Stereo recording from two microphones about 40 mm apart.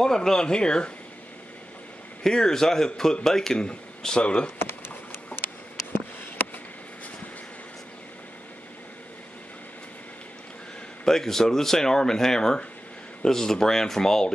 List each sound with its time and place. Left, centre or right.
0.0 s speech: centre
2.2 s speech: centre
4.6 s a sound: left
11.1 s speech: centre